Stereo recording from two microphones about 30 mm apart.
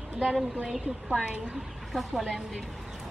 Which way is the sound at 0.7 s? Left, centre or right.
Centre.